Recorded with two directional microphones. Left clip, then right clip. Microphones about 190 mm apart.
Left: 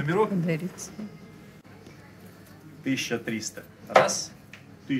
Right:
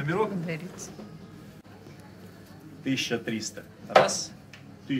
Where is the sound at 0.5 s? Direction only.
55° left (ahead or behind).